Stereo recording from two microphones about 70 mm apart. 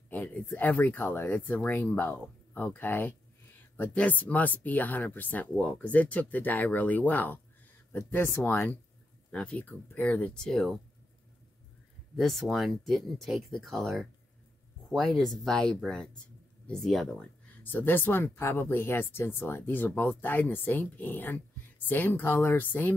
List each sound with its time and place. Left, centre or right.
0.1 s speech: left
9.3 s speech: centre
10.3 s speech: centre
12.2 s speech: centre
17.6 s speech: left